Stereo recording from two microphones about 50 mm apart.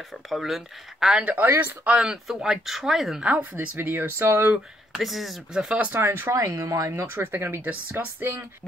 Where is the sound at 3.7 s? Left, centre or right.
Right.